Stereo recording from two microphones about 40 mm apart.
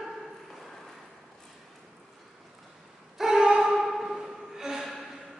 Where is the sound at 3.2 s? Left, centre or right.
Centre.